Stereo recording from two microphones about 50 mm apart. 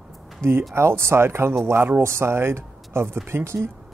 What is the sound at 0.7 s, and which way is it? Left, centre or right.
Speech, right.